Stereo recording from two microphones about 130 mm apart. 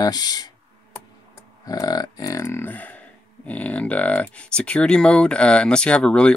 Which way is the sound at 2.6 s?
10° left (ahead or behind).